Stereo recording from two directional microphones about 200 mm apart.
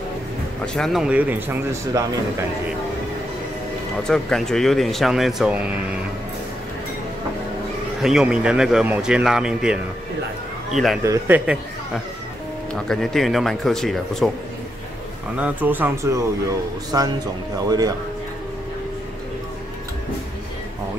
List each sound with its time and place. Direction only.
0.7 s speech: centre (ahead or behind)
4.1 s speech: centre (ahead or behind)
8.0 s speech: 5° right (ahead or behind)
12.7 s speech: centre (ahead or behind)
15.3 s speech: 10° right (ahead or behind)